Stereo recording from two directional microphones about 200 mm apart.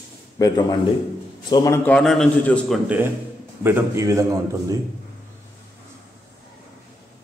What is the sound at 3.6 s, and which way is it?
A man's voice, 10° right (ahead or behind).